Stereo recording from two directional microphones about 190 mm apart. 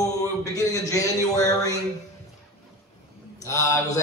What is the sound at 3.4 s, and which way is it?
Speech, 15° left (ahead or behind).